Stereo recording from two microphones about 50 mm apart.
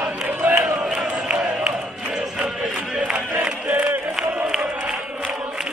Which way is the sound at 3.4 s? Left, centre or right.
Right.